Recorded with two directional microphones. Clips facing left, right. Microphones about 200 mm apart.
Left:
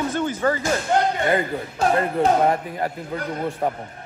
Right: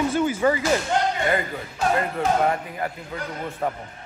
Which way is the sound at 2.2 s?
30° left (ahead or behind).